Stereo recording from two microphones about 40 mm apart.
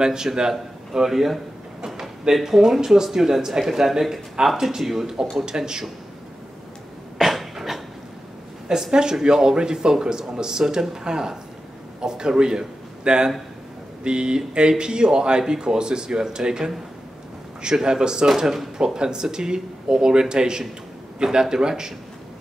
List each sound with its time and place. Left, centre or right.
0.0 s speech: centre
2.4 s speech: centre
7.2 s cough: centre
8.7 s a man's voice: centre
18.9 s speech: centre